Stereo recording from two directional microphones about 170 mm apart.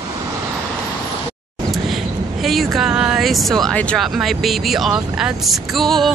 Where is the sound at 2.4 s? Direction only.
Centre (ahead or behind).